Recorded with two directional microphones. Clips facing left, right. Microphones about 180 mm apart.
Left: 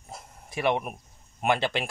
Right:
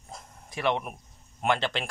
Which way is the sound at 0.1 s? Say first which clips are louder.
Left 3 dB; 10° left (ahead or behind).